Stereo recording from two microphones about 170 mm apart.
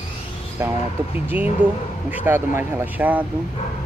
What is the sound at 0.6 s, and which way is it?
Speech, 15° right (ahead or behind).